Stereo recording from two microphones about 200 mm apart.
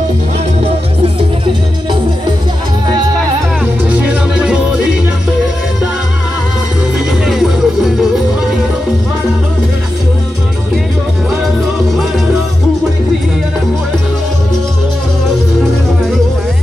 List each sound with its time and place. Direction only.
1.0 s music: 25° right (ahead or behind)
3.9 s music: 5° right (ahead or behind)
7.1 s music: centre (ahead or behind)